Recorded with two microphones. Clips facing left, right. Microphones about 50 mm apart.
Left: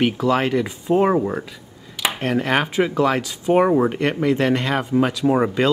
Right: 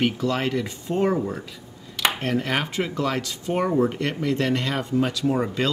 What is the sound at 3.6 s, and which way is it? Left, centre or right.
Speech, left.